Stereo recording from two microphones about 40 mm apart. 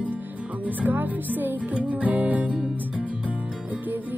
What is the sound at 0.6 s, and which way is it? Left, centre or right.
Music, right.